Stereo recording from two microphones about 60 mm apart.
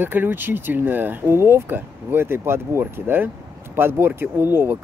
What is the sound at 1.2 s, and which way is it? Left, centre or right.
Speech, right.